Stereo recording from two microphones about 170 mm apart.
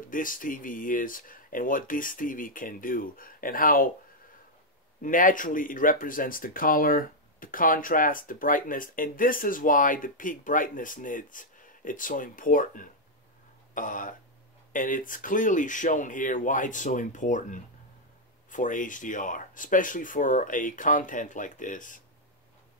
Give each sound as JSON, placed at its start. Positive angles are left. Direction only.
{"t": 0.1, "sound": "speech", "side_deg": 55}
{"t": 5.0, "sound": "speech", "side_deg": 50}